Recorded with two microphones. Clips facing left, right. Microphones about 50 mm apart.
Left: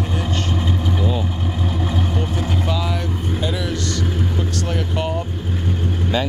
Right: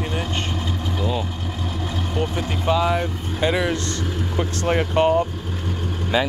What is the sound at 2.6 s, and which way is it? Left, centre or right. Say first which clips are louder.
Speech: right 4 dB; right.